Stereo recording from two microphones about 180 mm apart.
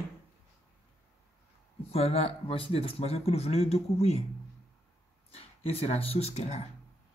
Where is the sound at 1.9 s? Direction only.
35° left (ahead or behind).